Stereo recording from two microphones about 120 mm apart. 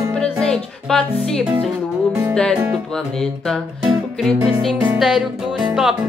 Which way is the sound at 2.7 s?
5° left (ahead or behind).